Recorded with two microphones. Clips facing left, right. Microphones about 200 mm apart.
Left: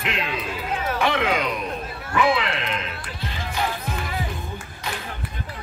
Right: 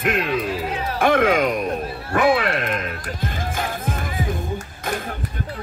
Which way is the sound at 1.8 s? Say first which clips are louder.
Right 4 dB; 30° right (ahead or behind).